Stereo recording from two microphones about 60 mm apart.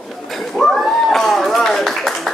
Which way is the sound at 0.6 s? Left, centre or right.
Centre.